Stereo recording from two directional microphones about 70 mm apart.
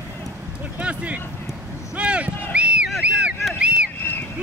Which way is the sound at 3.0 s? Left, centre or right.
Centre.